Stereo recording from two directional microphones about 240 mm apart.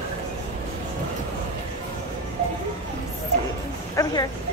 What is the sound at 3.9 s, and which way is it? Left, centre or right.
Speech, centre.